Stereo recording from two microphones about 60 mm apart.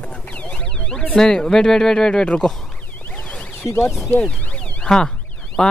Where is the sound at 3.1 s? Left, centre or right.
Left.